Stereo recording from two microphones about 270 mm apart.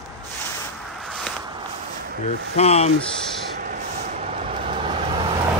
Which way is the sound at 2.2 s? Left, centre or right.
Left.